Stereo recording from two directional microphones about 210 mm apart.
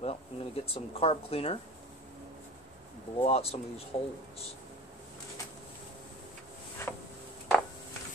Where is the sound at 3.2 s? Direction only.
30° left (ahead or behind).